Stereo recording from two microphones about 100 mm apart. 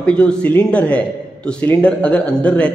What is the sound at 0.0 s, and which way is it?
A man's voice, 10° left (ahead or behind).